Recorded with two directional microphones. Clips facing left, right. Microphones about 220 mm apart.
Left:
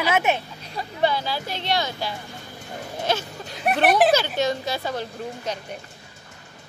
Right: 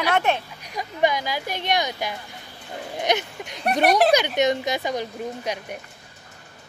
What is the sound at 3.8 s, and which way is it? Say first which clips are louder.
Speech: even; centre (ahead or behind).